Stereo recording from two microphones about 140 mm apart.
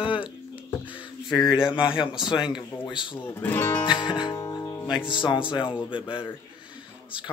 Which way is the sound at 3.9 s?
35° left (ahead or behind).